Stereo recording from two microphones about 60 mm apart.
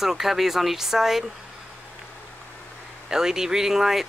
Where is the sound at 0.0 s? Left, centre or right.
Centre.